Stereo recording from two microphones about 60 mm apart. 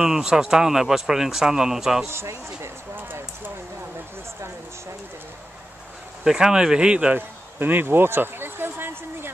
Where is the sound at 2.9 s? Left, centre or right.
Right.